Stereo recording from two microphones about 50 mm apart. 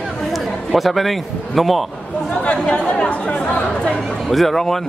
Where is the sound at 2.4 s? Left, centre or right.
Left.